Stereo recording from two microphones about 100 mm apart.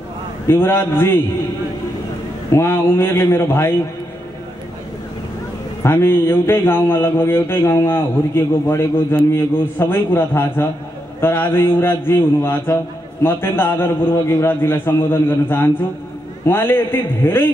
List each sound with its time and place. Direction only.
0.5 s speech: 25° left (ahead or behind)
2.5 s speech: 25° left (ahead or behind)
5.8 s speech: 25° left (ahead or behind)